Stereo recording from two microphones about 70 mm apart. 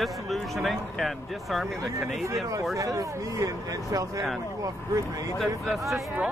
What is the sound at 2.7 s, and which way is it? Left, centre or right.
Speech, right.